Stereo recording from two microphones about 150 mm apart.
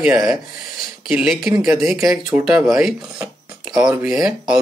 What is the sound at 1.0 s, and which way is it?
Speech, 5° right (ahead or behind).